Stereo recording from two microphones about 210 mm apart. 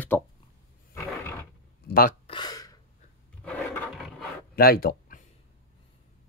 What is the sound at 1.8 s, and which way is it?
Speech, 45° left (ahead or behind).